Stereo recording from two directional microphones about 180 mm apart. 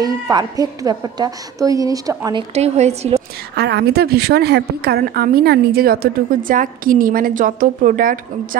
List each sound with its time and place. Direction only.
0.0 s a woman's voice: 20° right (ahead or behind)
2.5 s a woman's voice: 35° right (ahead or behind)
3.5 s a woman's voice: 65° right (ahead or behind)